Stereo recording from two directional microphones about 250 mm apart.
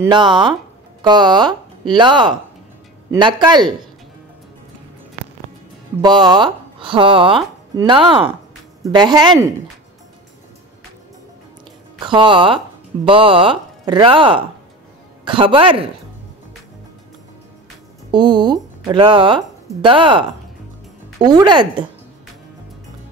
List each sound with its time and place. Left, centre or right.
0.0 s a man's voice: centre
5.9 s a man's voice: centre
12.0 s speech: centre
18.1 s a man's voice: centre